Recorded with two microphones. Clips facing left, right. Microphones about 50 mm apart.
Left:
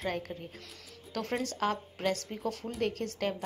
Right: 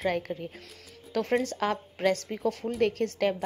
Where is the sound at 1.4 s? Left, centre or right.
Right.